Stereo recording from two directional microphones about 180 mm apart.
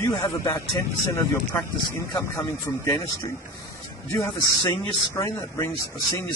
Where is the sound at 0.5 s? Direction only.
15° left (ahead or behind).